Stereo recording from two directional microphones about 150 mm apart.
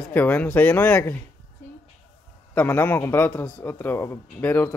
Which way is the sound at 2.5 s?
10° left (ahead or behind).